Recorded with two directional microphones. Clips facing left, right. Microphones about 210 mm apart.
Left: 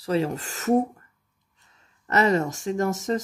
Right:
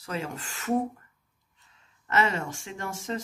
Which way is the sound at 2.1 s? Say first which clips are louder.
Left 6 dB; 40° left (ahead or behind).